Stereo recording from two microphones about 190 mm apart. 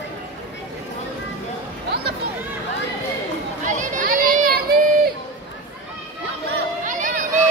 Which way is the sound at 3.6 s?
45° right (ahead or behind).